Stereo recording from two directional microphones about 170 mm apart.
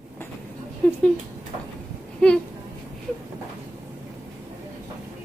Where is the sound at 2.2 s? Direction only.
5° left (ahead or behind).